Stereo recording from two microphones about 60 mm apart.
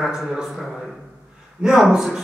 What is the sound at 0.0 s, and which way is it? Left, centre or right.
A man's voice, centre.